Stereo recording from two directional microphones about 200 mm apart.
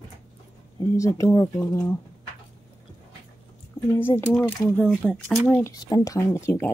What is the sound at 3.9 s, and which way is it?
Speech, 10° left (ahead or behind).